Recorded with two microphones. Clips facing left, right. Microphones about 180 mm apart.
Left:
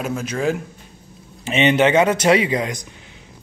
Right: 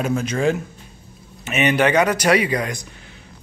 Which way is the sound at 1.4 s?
25° left (ahead or behind).